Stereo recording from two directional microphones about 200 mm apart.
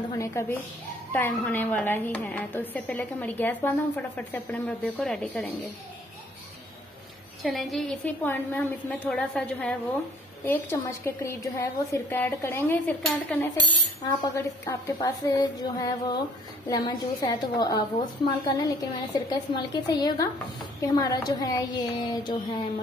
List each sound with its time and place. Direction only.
0.1 s a woman's voice: 15° left (ahead or behind)
7.4 s a woman's voice: centre (ahead or behind); by 22.4 s 20° left (ahead or behind)